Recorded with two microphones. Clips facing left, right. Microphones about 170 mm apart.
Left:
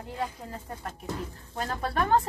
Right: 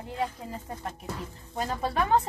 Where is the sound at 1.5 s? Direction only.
5° right (ahead or behind).